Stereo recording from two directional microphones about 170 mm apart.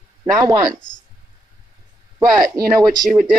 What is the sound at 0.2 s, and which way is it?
Speech, 20° right (ahead or behind).